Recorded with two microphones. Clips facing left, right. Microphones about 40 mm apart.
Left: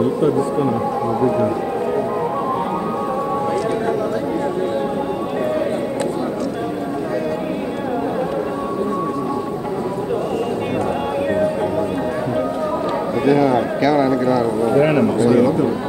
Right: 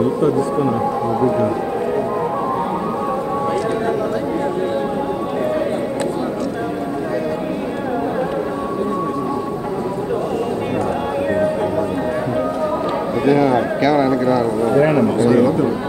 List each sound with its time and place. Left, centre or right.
1.2 s music: centre
13.3 s a sound: right
13.8 s a man's voice: right